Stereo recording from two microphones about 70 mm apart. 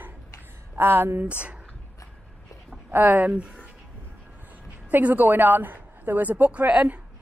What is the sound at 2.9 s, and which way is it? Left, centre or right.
Speech, right.